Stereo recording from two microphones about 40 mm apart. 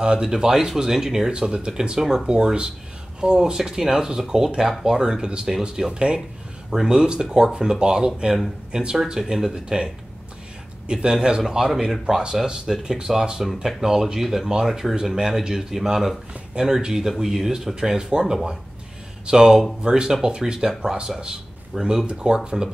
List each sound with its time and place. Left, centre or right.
0.0 s speech: centre
9.7 s speech: right
10.9 s speech: right
14.2 s speech: centre